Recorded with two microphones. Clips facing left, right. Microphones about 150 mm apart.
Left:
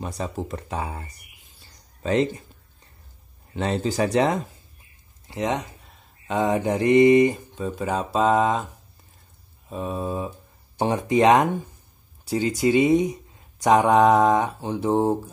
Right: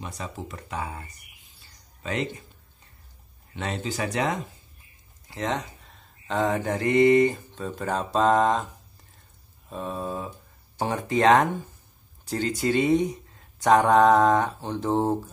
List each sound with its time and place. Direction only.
0.0 s speech: 35° left (ahead or behind)
3.5 s speech: 40° left (ahead or behind)
5.3 s speech: 15° left (ahead or behind)
9.7 s speech: 10° left (ahead or behind)